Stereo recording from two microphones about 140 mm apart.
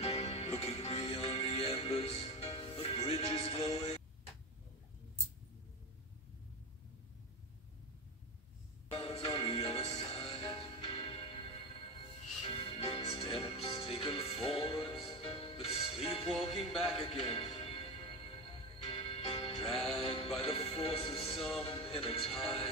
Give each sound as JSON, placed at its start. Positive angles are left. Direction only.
{"t": 0.0, "sound": "music", "side_deg": 50}
{"t": 8.9, "sound": "music", "side_deg": 40}
{"t": 18.9, "sound": "music", "side_deg": 40}